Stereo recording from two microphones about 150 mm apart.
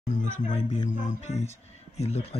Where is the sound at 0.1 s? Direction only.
55° left (ahead or behind).